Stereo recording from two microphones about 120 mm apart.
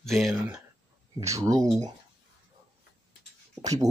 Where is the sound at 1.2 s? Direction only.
25° right (ahead or behind).